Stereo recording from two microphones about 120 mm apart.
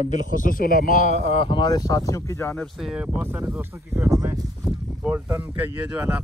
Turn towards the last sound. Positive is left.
turn(degrees=-15)  # may be behind; listen again after turning